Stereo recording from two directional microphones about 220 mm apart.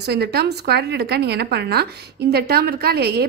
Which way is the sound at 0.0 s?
50° right (ahead or behind).